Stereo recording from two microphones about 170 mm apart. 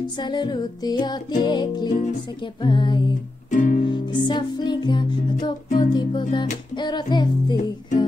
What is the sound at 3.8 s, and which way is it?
Music, 25° left (ahead or behind).